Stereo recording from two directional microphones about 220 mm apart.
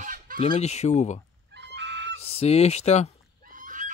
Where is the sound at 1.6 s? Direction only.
55° right (ahead or behind).